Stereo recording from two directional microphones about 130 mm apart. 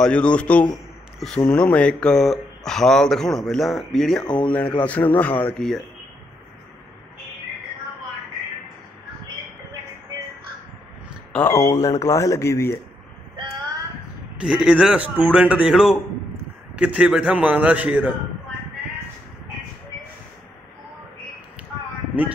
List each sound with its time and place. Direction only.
0.0 s speech: 10° left (ahead or behind)
11.3 s speech: 20° left (ahead or behind)
14.4 s a man's voice: 5° right (ahead or behind)